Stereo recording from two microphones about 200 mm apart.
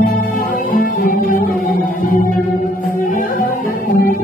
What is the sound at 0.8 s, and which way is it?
Music, 45° left (ahead or behind).